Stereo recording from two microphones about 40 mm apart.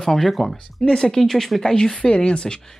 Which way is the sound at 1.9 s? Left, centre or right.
Left.